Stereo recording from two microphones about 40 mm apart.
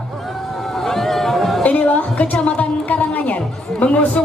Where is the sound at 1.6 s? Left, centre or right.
Left.